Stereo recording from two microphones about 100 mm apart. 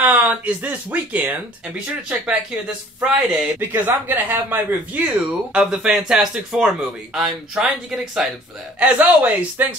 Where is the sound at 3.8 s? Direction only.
20° right (ahead or behind).